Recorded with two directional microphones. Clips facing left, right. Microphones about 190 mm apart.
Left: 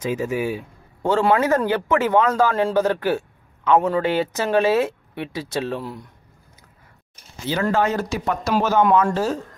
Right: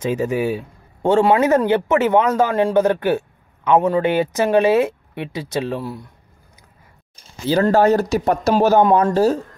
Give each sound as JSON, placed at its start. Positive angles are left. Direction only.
{"t": 0.0, "sound": "speech", "side_deg": -35}
{"t": 1.0, "sound": "speech", "side_deg": -20}
{"t": 7.7, "sound": "speech", "side_deg": -40}